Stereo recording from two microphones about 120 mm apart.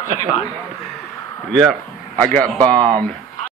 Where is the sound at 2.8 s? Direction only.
35° right (ahead or behind).